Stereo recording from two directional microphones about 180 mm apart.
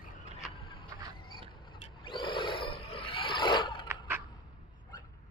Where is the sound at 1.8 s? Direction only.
25° left (ahead or behind).